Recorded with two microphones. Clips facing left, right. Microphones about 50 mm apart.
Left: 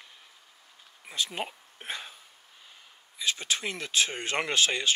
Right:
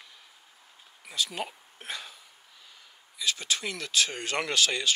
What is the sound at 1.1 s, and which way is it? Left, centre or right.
Speech, left.